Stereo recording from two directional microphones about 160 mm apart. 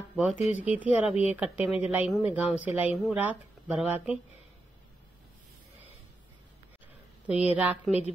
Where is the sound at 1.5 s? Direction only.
40° left (ahead or behind).